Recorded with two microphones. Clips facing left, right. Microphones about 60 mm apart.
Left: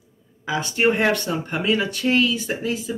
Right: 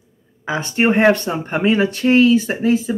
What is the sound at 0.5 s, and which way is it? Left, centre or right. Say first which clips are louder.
Speech: right 3 dB; right.